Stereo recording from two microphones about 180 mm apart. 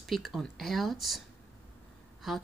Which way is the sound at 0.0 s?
Centre (ahead or behind).